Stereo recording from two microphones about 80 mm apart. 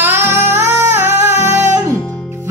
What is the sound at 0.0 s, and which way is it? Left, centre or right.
Music, right.